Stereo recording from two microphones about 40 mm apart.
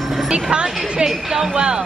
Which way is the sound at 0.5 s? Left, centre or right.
Centre.